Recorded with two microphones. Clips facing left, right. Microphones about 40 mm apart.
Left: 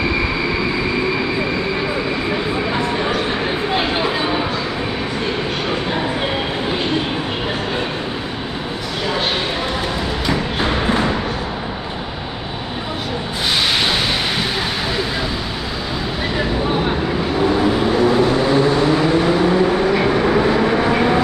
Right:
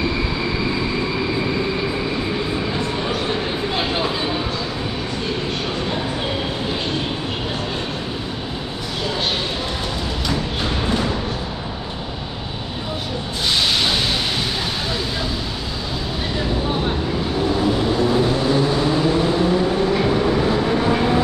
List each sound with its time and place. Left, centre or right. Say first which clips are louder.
2.7 s a sound: left 4 dB; left
10.2 s music: left 4 dB; left
17.6 s vehicle: left 3 dB; left